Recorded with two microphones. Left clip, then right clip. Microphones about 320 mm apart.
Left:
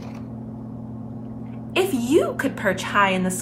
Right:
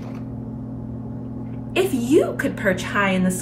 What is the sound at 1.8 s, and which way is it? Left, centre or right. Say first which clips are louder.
A woman's voice: right 2 dB; centre.